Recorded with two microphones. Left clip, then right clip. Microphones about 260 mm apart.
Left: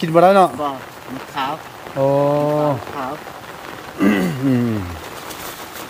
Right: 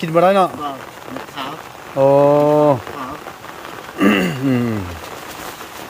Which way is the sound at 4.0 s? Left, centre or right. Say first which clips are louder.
Right 3 dB; centre.